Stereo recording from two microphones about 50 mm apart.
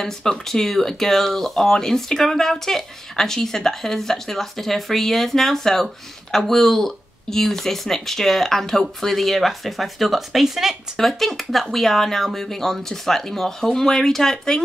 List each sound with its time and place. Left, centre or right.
0.0 s speech: centre
11.0 s speech: centre